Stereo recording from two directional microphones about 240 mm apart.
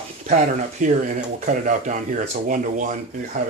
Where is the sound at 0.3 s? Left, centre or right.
Right.